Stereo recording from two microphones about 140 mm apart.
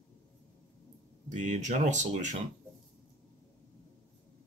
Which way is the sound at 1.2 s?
60° right (ahead or behind).